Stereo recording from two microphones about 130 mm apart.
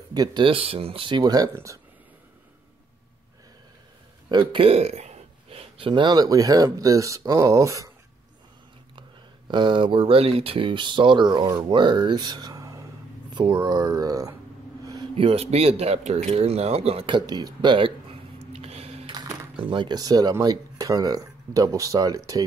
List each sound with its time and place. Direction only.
0.1 s speech: 30° right (ahead or behind)
4.3 s speech: 40° right (ahead or behind)
9.5 s speech: 35° right (ahead or behind)
14.9 s a sound: 35° right (ahead or behind)
15.2 s speech: 50° right (ahead or behind)
18.4 s a sound: 50° right (ahead or behind)
19.7 s speech: 35° right (ahead or behind)